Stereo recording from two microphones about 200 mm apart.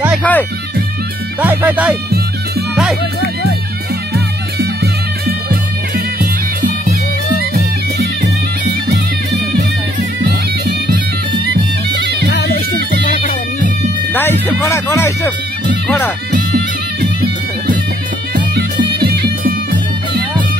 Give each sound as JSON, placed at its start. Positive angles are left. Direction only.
{"t": 0.2, "sound": "music", "side_deg": 10}
{"t": 1.4, "sound": "speech", "side_deg": -10}
{"t": 2.7, "sound": "music", "side_deg": 0}
{"t": 5.2, "sound": "music", "side_deg": -45}
{"t": 11.4, "sound": "music", "side_deg": -55}
{"t": 12.3, "sound": "music", "side_deg": 50}
{"t": 14.1, "sound": "speech", "side_deg": 10}
{"t": 18.3, "sound": "music", "side_deg": -50}